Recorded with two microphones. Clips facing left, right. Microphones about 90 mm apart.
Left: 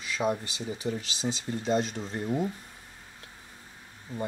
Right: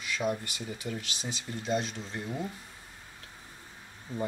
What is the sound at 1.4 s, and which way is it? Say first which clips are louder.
Speech: left 3 dB; 40° left (ahead or behind).